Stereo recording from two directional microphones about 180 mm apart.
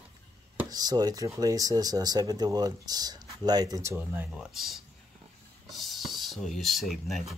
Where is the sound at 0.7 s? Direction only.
20° right (ahead or behind).